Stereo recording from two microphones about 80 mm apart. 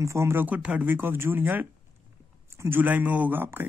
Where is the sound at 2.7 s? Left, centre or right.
Right.